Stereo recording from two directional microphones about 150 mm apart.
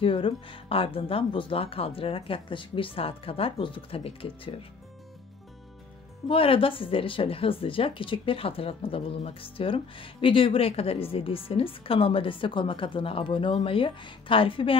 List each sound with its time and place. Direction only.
0.0 s a woman's voice: 35° left (ahead or behind)
6.2 s a woman's voice: 40° left (ahead or behind)